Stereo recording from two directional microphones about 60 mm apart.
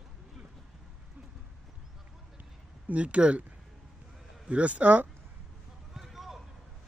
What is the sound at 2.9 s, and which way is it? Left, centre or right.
Speech, centre.